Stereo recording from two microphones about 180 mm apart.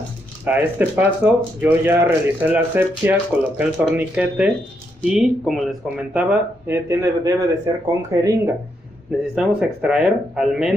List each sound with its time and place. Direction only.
0.5 s speech: 10° right (ahead or behind)
6.7 s speech: 15° right (ahead or behind)
9.3 s speech: 5° right (ahead or behind)